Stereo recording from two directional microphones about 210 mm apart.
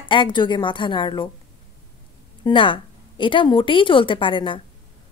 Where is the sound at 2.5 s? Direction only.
25° left (ahead or behind).